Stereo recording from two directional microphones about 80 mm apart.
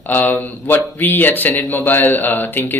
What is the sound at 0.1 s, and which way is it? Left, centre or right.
Speech, left.